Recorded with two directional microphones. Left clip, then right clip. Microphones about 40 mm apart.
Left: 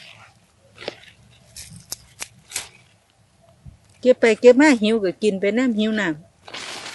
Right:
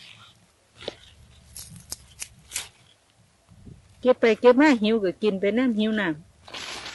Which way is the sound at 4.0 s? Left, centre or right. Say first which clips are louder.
Left 4 dB; right.